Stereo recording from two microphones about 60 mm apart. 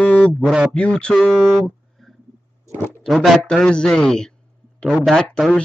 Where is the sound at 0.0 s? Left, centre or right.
Centre.